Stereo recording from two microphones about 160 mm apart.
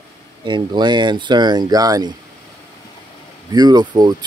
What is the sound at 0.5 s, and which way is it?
Speech, 30° right (ahead or behind).